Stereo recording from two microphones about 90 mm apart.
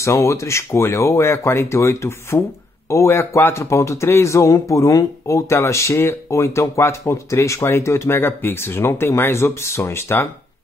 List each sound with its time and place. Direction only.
0.0 s speech: 35° left (ahead or behind)